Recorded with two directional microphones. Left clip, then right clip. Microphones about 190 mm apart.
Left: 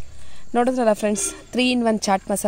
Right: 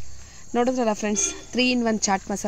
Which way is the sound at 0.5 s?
50° left (ahead or behind).